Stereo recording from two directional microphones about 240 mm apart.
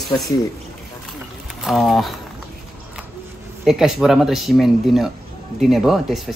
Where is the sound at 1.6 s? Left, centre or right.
Centre.